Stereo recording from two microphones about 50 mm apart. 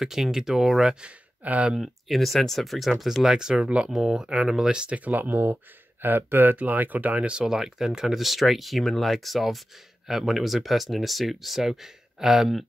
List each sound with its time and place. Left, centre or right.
0.0 s speech: centre
1.0 s speech: right
1.8 s speech: centre
3.3 s speech: centre
4.9 s speech: right
7.3 s speech: centre